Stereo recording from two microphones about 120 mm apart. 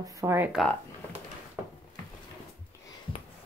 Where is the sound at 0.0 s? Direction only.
25° right (ahead or behind).